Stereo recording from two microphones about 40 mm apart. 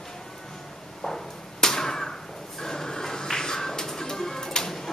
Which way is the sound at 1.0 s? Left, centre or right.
Centre.